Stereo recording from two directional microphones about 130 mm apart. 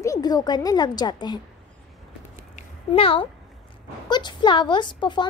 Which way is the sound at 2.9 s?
45° left (ahead or behind).